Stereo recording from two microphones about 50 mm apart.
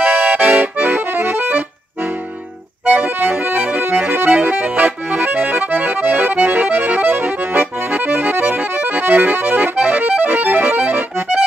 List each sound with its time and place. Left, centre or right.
0.0 s accordion: right
2.8 s accordion: right